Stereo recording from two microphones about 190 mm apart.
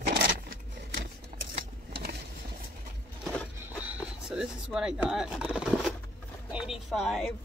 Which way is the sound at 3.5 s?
5° right (ahead or behind).